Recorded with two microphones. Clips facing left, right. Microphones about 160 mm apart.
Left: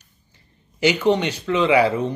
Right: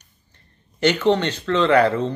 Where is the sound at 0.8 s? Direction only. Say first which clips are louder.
Even; 10° left (ahead or behind).